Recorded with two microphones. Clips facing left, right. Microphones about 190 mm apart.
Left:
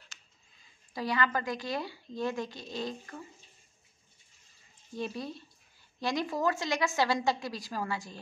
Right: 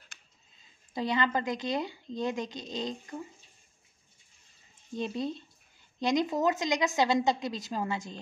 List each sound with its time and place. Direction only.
0.9 s a woman's voice: 20° right (ahead or behind)
4.9 s a woman's voice: 20° right (ahead or behind)